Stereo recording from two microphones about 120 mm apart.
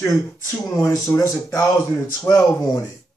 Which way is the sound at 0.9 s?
30° left (ahead or behind).